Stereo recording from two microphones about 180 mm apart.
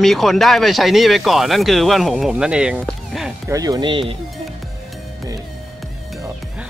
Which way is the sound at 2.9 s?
Centre (ahead or behind).